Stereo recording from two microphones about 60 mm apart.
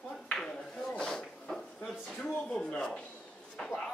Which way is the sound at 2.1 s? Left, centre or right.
Centre.